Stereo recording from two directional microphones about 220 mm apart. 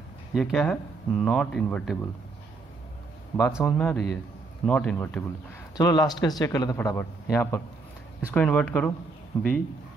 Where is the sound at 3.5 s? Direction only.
5° left (ahead or behind).